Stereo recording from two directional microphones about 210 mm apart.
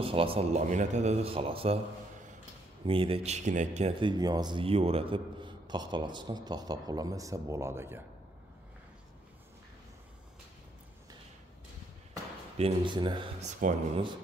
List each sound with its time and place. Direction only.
0.0 s a man's voice: 25° right (ahead or behind)
2.8 s speech: 25° right (ahead or behind)
4.1 s a man's voice: 20° right (ahead or behind)
12.5 s a man's voice: 25° right (ahead or behind)
13.4 s speech: 35° right (ahead or behind)